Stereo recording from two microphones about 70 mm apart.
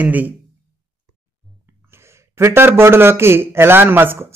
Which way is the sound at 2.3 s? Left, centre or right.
Right.